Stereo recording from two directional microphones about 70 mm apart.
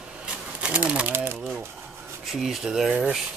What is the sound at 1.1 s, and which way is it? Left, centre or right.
Speech, right.